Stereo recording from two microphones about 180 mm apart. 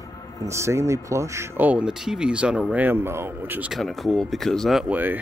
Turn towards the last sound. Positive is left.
turn(degrees=-10)  # may be behind; listen again after turning